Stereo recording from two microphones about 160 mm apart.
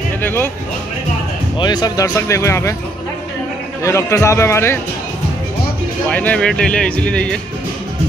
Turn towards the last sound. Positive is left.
turn(degrees=5)  # may be behind; listen again after turning